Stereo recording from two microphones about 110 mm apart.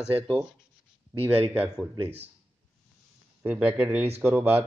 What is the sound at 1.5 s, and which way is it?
Speech, 10° right (ahead or behind).